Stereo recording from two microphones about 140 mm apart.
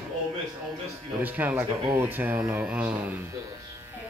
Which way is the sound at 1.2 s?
10° right (ahead or behind).